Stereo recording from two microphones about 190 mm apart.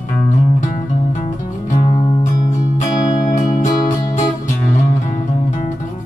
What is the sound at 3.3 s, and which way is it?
Music, 45° left (ahead or behind).